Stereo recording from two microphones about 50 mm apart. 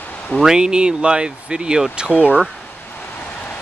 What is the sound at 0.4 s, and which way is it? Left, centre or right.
Speech, centre.